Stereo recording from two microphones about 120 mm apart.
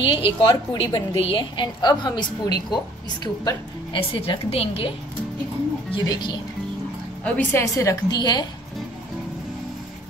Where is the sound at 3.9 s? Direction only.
50° left (ahead or behind).